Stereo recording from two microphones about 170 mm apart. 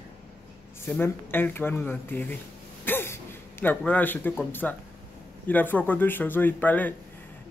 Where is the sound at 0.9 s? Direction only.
10° left (ahead or behind).